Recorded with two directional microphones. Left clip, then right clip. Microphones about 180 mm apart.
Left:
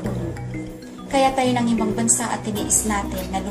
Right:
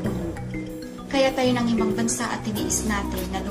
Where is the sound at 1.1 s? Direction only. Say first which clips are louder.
Left 3 dB; centre (ahead or behind).